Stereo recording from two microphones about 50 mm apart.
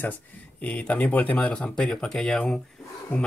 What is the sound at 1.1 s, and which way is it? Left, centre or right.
Speech, left.